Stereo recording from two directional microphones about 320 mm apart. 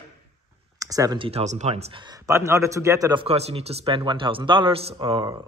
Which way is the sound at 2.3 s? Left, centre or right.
Centre.